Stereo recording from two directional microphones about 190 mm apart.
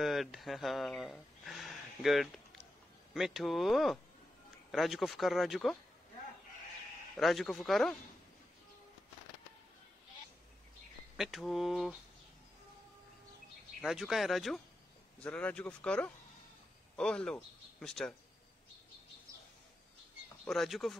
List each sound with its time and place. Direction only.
0.0 s speech: centre (ahead or behind)
7.2 s speech: centre (ahead or behind)
11.1 s speech: centre (ahead or behind)
13.8 s speech: centre (ahead or behind)
20.4 s speech: centre (ahead or behind)